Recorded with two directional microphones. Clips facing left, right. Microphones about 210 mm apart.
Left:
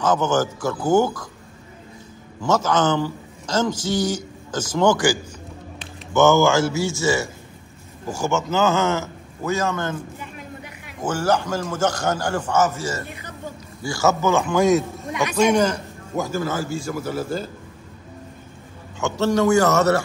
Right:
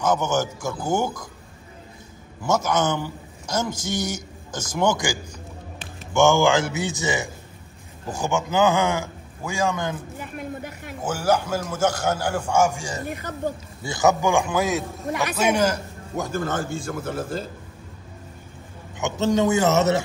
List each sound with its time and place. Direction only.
0.0 s a man's voice: 10° right (ahead or behind)
2.4 s a man's voice: 10° right (ahead or behind)
4.7 s a man's voice: 10° right (ahead or behind)
10.2 s a sound: 50° right (ahead or behind)
11.0 s a man's voice: 10° right (ahead or behind)
14.6 s a man's voice: centre (ahead or behind)
18.9 s a man's voice: 20° right (ahead or behind)